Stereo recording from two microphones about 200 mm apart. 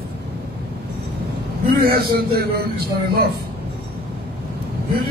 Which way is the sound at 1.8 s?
50° right (ahead or behind).